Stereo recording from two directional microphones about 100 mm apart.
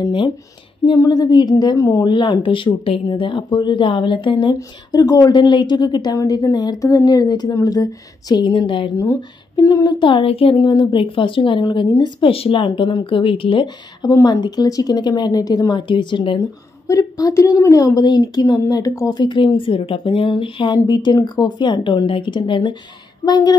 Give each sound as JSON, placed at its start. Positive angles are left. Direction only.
{"t": 0.0, "sound": "a woman's voice", "side_deg": 50}
{"t": 1.8, "sound": "a woman's voice", "side_deg": 30}
{"t": 2.0, "sound": "speech", "side_deg": 50}
{"t": 4.6, "sound": "a woman's voice", "side_deg": 35}
{"t": 5.3, "sound": "a woman's voice", "side_deg": 50}
{"t": 8.9, "sound": "speech", "side_deg": 25}
{"t": 9.6, "sound": "a woman's voice", "side_deg": 40}
{"t": 10.0, "sound": "speech", "side_deg": 65}
{"t": 10.6, "sound": "a woman's voice", "side_deg": 45}
{"t": 12.3, "sound": "speech", "side_deg": 65}
{"t": 14.2, "sound": "a woman's voice", "side_deg": 45}
{"t": 16.3, "sound": "a woman's voice", "side_deg": 35}
{"t": 18.0, "sound": "a woman's voice", "side_deg": 45}